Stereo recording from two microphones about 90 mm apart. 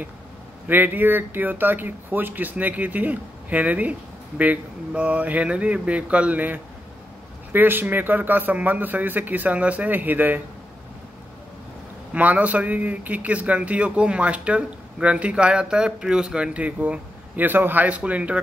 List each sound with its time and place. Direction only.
0.7 s speech: 20° right (ahead or behind)
12.1 s speech: 15° right (ahead or behind)